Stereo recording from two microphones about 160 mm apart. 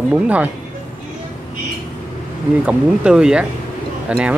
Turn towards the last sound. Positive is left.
turn(degrees=-10)  # may be behind; listen again after turning